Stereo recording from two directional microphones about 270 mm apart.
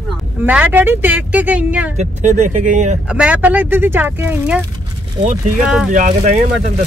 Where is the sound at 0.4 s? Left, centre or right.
Centre.